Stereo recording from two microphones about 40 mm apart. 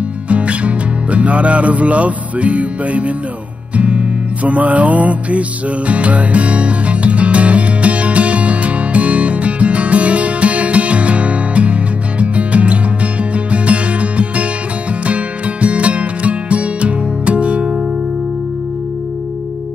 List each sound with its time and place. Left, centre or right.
0.3 s music: right